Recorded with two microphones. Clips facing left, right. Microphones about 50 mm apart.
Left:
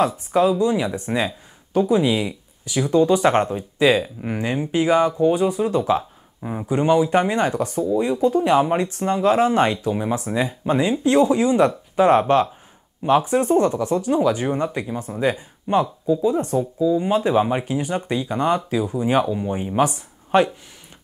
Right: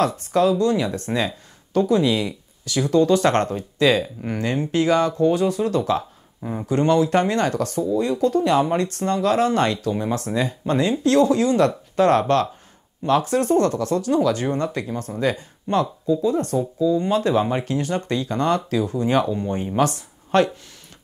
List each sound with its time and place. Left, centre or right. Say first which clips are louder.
0.0 s speech: left 1 dB; centre